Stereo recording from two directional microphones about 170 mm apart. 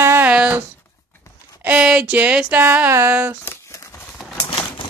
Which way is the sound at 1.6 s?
5° right (ahead or behind).